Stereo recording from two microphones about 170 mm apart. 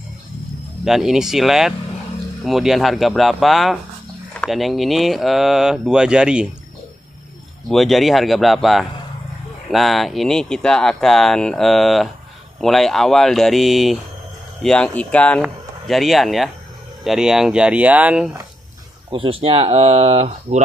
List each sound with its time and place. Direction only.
0.8 s speech: centre (ahead or behind)
7.6 s speech: centre (ahead or behind)
19.0 s speech: 30° right (ahead or behind)